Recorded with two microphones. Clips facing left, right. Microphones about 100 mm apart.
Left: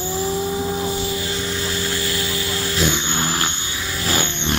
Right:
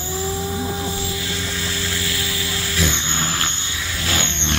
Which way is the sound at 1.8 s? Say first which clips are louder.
Left 3 dB; 45° left (ahead or behind).